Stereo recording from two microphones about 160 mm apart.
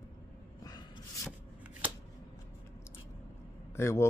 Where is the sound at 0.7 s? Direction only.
25° left (ahead or behind).